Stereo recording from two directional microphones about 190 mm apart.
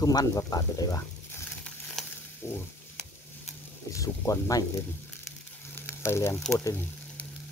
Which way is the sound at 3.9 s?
15° left (ahead or behind).